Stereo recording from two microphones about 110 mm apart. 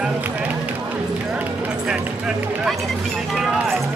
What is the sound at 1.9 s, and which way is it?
Speech, 5° right (ahead or behind).